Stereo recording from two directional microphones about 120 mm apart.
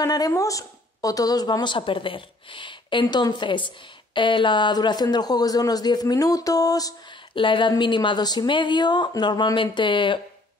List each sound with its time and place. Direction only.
0.0 s speech: 30° left (ahead or behind)
7.3 s speech: 45° left (ahead or behind)